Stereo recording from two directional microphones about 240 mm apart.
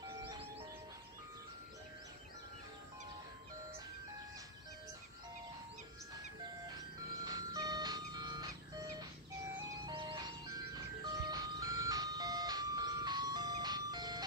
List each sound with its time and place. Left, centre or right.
7.2 s music: centre
9.8 s music: centre
11.2 s ice cream truck: centre